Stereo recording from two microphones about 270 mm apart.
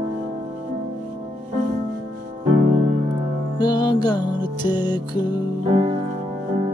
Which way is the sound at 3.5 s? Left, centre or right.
Centre.